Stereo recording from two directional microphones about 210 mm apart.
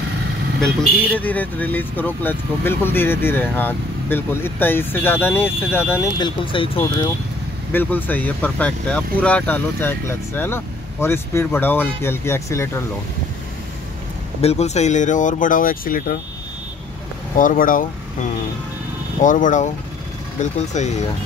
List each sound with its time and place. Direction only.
1.1 s speech: 5° left (ahead or behind); by 6.8 s 25° left (ahead or behind)
7.7 s speech: 10° left (ahead or behind)
14.4 s speech: 30° left (ahead or behind)
17.4 s speech: 40° left (ahead or behind)
19.2 s speech: 40° left (ahead or behind)